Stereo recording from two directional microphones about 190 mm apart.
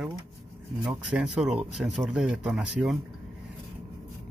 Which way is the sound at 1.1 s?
5° right (ahead or behind).